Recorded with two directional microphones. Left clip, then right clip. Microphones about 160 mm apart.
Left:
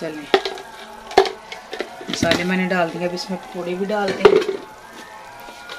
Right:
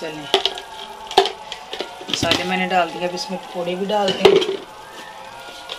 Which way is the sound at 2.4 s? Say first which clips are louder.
Right 2 dB; 75° left (ahead or behind).